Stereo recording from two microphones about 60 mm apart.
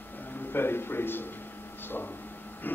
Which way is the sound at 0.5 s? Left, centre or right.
Left.